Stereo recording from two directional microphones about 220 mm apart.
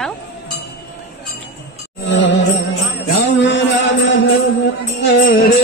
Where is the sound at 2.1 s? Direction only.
55° left (ahead or behind).